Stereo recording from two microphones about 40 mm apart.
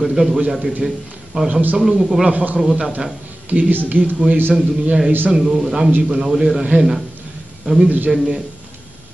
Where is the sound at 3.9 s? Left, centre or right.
Right.